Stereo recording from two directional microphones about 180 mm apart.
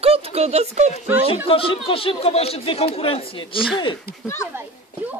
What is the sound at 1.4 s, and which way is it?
Speech, 30° left (ahead or behind).